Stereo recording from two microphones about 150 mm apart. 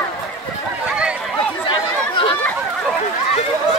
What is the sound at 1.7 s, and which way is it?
Chatter, 35° left (ahead or behind).